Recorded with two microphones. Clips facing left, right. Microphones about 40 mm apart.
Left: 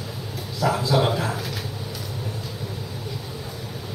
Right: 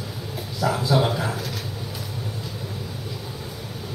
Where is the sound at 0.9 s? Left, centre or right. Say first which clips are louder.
Right 1 dB; centre.